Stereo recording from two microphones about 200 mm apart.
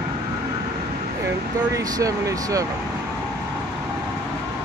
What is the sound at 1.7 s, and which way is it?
Speech, 15° right (ahead or behind).